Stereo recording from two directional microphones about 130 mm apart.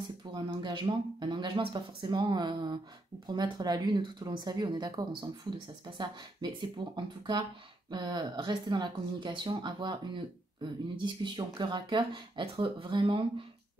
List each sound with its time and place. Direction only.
0.3 s speech: 35° right (ahead or behind)
7.9 s speech: 35° right (ahead or behind)